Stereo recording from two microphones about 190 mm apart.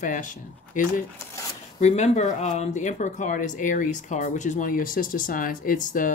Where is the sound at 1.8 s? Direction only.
35° left (ahead or behind).